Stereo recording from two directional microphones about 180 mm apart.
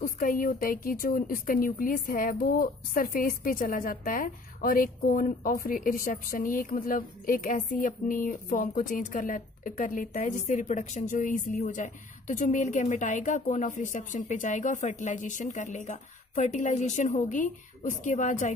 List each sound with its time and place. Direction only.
0.0 s speech: 50° left (ahead or behind)